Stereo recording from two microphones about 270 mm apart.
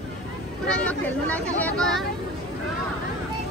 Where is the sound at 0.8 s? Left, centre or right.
Centre.